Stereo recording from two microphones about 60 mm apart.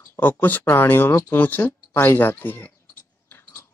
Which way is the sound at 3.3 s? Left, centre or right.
Left.